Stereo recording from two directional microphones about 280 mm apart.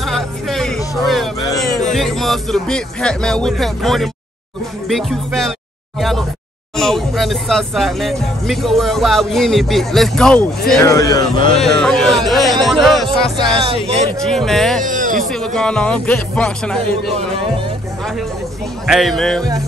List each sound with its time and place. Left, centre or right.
0.0 s music: centre
1.0 s a sound: centre
1.9 s a man's voice: centre
11.8 s speech: centre
13.4 s speech: centre
14.2 s speech: centre
14.8 s music: right
15.1 s speech: centre
18.9 s speech: centre